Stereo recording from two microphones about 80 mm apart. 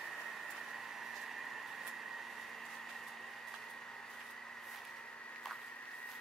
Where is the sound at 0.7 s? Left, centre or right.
Centre.